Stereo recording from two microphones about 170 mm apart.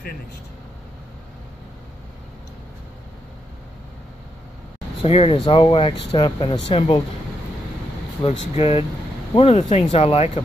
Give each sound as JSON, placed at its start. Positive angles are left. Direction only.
{"t": 5.0, "sound": "speech", "side_deg": 35}
{"t": 8.2, "sound": "speech", "side_deg": 35}